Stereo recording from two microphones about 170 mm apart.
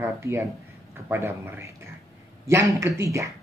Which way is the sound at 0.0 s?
15° right (ahead or behind).